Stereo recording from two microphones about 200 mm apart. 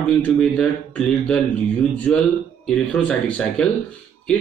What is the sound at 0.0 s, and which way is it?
A man's voice, 5° left (ahead or behind).